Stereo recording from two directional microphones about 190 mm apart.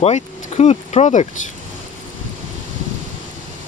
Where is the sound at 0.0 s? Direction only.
35° left (ahead or behind).